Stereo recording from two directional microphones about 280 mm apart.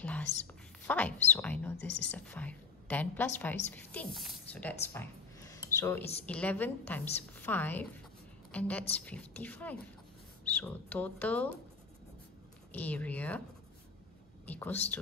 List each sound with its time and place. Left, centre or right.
0.8 s a woman's voice: centre
12.7 s speech: centre
14.4 s speech: centre